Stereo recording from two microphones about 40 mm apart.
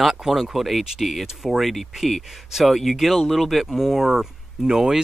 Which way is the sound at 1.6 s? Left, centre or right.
Centre.